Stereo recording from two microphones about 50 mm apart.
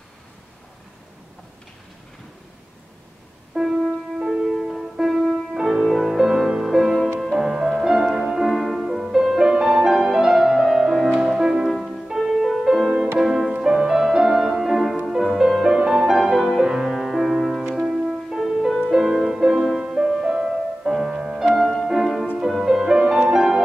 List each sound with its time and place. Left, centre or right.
3.5 s music: centre
4.2 s music: centre
11.7 s music: centre
17.7 s music: centre
18.4 s music: centre
21.5 s music: centre